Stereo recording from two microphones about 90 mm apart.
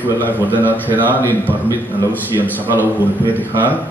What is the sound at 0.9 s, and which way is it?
Speech, 20° right (ahead or behind).